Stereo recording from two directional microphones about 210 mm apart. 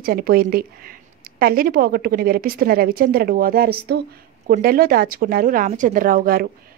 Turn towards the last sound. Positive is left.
turn(degrees=-45)  # may be behind; listen again after turning